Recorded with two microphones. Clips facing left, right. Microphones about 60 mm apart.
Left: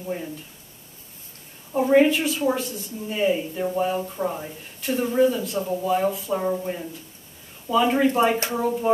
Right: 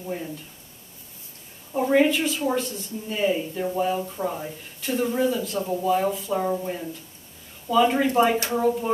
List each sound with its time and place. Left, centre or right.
0.0 s speech: centre
1.7 s a woman's voice: centre